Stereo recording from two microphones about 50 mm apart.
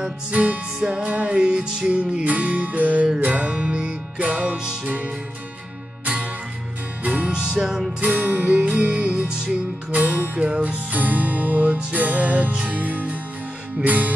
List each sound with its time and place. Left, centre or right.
0.3 s music: right
0.7 s music: centre
7.0 s music: right
7.2 s music: centre
8.0 s music: right
8.6 s music: right
9.8 s music: right
10.4 s music: right